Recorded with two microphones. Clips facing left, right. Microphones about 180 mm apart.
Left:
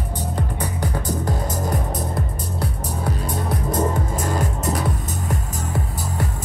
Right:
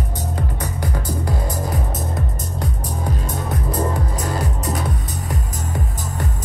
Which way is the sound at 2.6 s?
5° left (ahead or behind).